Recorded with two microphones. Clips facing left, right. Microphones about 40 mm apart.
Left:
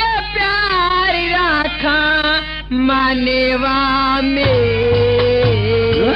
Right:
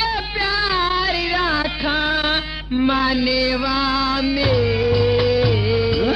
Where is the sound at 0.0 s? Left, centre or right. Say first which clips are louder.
Left 5 dB; left.